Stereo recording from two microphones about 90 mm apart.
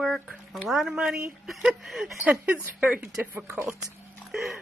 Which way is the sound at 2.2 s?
15° right (ahead or behind).